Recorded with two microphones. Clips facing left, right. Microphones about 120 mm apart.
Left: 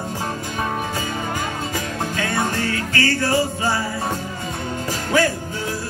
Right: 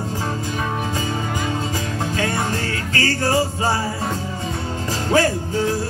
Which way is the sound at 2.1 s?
30° right (ahead or behind).